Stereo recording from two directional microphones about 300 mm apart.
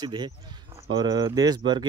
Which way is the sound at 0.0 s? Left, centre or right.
Centre.